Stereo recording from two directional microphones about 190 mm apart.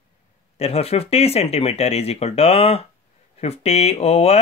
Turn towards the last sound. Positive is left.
turn(degrees=35)  # may be behind; listen again after turning